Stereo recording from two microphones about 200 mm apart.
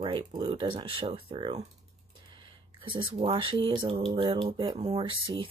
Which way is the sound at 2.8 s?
25° right (ahead or behind).